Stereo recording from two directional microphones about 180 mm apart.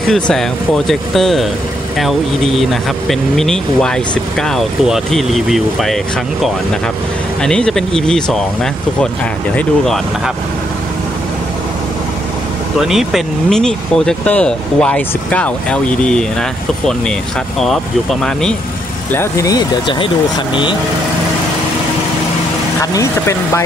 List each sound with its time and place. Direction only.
0.0 s speech: centre (ahead or behind)
7.4 s speech: 5° left (ahead or behind)
9.6 s speech: centre (ahead or behind)
12.8 s speech: centre (ahead or behind)
18.2 s speech: 5° left (ahead or behind)
19.1 s speech: 15° left (ahead or behind)
22.9 s speech: 15° left (ahead or behind)